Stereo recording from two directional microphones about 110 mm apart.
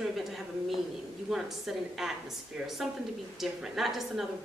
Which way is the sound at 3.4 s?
Centre (ahead or behind).